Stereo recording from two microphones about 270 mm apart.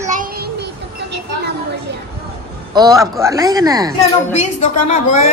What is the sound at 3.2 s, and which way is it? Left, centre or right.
Speech, centre.